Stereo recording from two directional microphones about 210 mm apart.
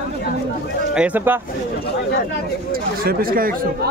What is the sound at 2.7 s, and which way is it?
Speech, 45° right (ahead or behind).